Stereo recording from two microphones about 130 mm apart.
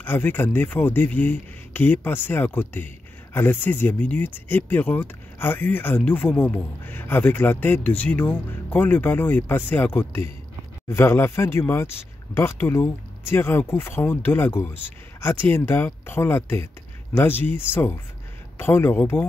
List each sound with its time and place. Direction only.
0.0 s speech: 15° left (ahead or behind)